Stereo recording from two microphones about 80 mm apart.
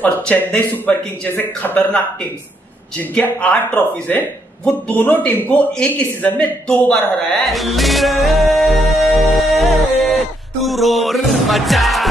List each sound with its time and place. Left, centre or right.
0.0 s a man's voice: left
3.2 s a man's voice: centre
7.4 s music: centre